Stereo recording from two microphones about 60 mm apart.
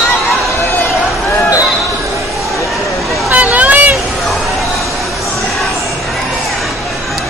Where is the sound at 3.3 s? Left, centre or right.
Right.